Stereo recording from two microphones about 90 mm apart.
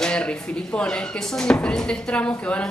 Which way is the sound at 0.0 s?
10° left (ahead or behind).